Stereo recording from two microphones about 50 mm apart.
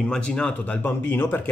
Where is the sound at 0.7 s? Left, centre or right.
Left.